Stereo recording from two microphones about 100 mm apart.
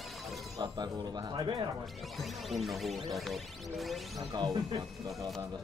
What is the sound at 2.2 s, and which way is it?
Music, centre (ahead or behind).